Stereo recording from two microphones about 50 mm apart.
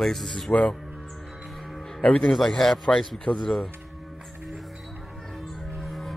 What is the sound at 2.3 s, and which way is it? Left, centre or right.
A man's voice, centre.